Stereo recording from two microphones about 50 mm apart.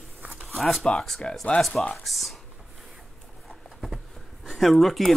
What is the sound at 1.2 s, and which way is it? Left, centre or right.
Speech, centre.